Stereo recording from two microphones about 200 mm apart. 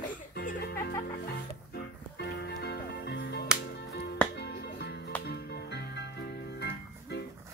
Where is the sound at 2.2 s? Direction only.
55° left (ahead or behind).